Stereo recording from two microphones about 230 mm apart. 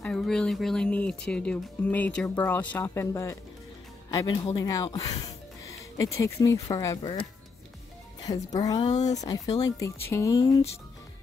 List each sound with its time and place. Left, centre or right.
0.0 s speech: centre
8.2 s speech: centre
8.8 s speech: left
9.1 s speech: centre